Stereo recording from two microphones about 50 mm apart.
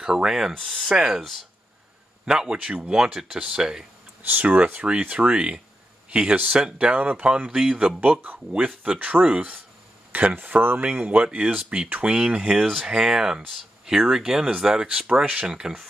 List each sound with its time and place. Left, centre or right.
0.0 s speech: centre
0.6 s speech: centre
0.8 s speech: centre
2.2 s speech: centre
4.2 s speech: right
7.2 s speech: centre
8.0 s speech: right
8.5 s speech: right
10.1 s speech: right
10.9 s speech: right
11.2 s speech: centre